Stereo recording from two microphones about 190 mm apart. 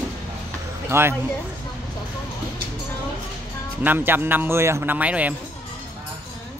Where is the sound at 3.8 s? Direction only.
10° right (ahead or behind).